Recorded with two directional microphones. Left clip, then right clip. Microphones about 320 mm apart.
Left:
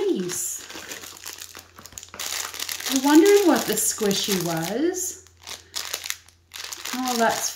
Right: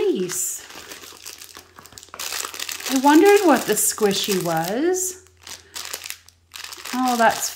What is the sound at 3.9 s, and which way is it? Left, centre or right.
Speech, centre.